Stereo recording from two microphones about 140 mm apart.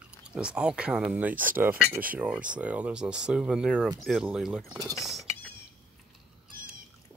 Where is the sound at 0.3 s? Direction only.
5° right (ahead or behind).